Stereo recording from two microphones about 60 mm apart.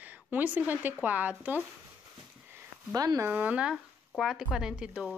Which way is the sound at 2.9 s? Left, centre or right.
Right.